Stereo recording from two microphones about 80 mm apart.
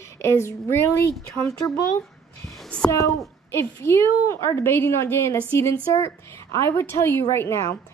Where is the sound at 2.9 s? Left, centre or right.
Left.